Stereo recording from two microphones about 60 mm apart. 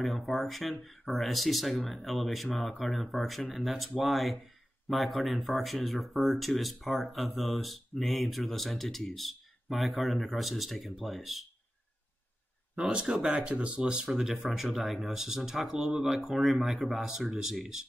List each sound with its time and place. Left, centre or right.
0.0 s speech: centre
12.7 s speech: centre